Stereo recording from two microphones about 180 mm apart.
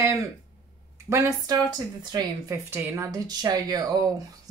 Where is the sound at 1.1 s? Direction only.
15° right (ahead or behind).